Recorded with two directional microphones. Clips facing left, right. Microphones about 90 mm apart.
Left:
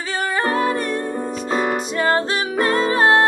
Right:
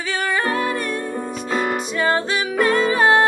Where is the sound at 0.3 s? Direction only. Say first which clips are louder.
Left 2 dB; 35° left (ahead or behind).